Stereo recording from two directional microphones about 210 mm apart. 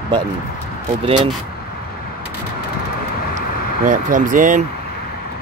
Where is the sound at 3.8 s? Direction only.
40° right (ahead or behind).